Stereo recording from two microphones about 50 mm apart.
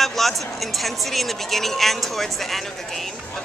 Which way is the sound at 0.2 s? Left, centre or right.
Centre.